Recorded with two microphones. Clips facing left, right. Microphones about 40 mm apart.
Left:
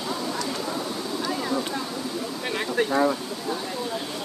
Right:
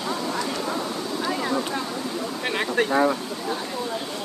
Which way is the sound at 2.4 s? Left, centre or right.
Right.